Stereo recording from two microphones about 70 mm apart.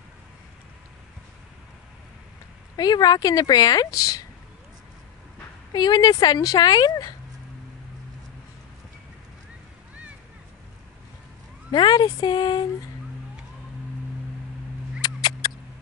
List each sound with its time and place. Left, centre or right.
2.7 s speech: left
5.7 s speech: left
11.7 s speech: left
15.0 s mouse: left